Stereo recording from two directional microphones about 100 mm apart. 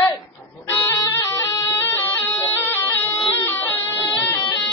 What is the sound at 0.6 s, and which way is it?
Music, 25° left (ahead or behind).